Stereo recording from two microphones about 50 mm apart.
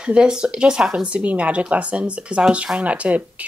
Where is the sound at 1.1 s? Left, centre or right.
Right.